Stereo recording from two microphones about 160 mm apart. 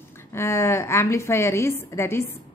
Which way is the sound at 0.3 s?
15° left (ahead or behind).